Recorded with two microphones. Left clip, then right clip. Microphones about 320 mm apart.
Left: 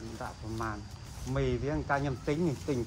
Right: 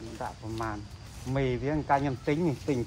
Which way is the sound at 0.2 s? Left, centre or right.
Right.